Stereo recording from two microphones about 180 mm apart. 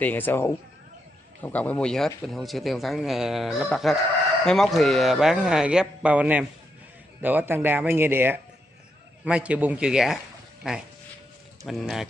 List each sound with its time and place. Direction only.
0.0 s speech: 10° left (ahead or behind)
11.6 s speech: centre (ahead or behind)